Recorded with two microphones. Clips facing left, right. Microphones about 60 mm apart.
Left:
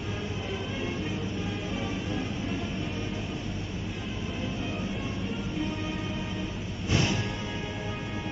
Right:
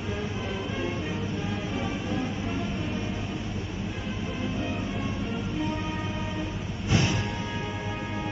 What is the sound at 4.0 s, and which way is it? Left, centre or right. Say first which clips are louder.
Train: right 3 dB; centre.